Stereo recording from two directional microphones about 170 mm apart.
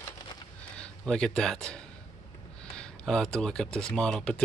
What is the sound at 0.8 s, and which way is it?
Speech, 5° left (ahead or behind).